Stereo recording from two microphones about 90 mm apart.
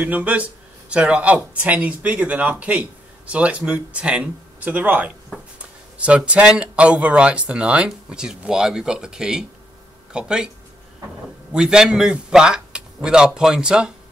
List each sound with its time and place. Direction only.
0.0 s speech: 15° right (ahead or behind)
11.5 s speech: 10° right (ahead or behind)